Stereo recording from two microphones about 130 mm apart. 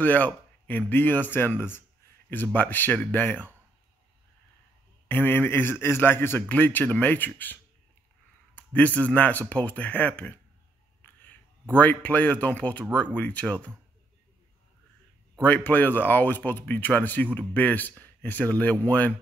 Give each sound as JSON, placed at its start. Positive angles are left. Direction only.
{"t": 0.0, "sound": "speech", "side_deg": 10}
{"t": 5.0, "sound": "speech", "side_deg": 15}
{"t": 8.5, "sound": "speech", "side_deg": 10}
{"t": 11.8, "sound": "speech", "side_deg": 10}
{"t": 15.4, "sound": "speech", "side_deg": 15}